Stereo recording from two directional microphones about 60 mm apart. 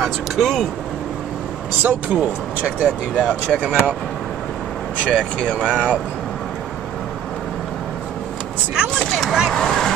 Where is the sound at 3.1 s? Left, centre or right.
Centre.